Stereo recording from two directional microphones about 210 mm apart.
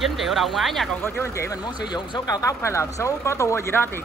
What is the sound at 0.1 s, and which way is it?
Speech, centre (ahead or behind).